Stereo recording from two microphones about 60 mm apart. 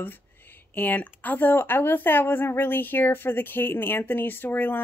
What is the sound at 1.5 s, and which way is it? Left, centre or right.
Speech, left.